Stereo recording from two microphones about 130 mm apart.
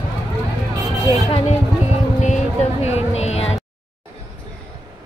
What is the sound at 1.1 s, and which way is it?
Speech, 50° left (ahead or behind).